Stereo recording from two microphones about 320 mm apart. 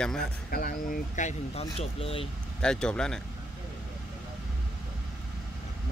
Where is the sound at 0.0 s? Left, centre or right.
Centre.